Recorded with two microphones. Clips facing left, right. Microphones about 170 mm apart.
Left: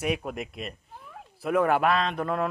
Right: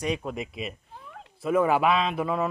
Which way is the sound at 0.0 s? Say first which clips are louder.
Even; 5° left (ahead or behind).